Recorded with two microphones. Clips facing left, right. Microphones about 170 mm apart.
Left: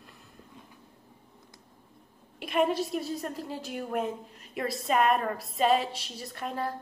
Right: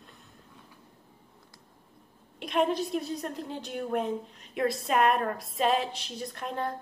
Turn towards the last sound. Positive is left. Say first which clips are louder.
# right 1 dB
turn(degrees=0)  # may be behind; listen again after turning